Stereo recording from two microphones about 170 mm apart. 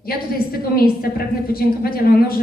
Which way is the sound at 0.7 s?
60° left (ahead or behind).